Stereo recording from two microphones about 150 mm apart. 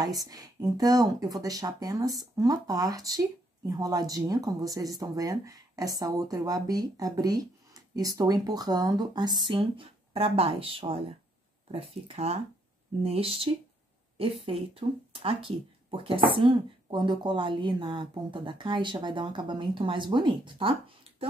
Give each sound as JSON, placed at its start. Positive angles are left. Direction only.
{"t": 0.0, "sound": "speech", "side_deg": -25}